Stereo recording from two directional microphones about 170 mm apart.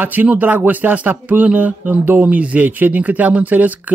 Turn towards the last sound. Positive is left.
turn(degrees=-10)  # may be behind; listen again after turning